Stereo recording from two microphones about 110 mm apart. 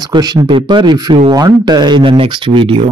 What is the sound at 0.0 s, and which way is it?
Speech, 40° right (ahead or behind).